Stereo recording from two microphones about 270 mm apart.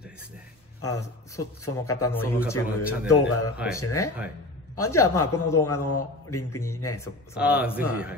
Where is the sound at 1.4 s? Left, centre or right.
Left.